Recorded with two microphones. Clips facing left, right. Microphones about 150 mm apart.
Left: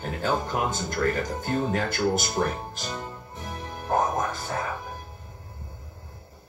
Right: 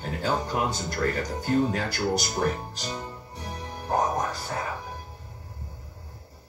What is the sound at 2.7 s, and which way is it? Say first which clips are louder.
Music: even; 40° right (ahead or behind).